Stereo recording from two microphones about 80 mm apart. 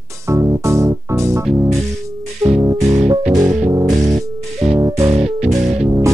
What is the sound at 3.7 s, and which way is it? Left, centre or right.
Music, right.